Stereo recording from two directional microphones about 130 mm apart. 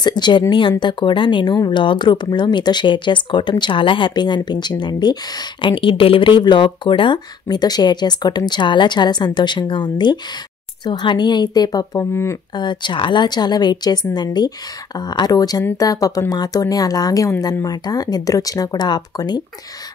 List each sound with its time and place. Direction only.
0.0 s speech: 35° left (ahead or behind)
12.5 s speech: 35° left (ahead or behind)